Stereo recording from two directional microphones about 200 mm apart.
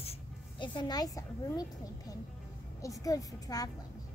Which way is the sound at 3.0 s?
15° left (ahead or behind).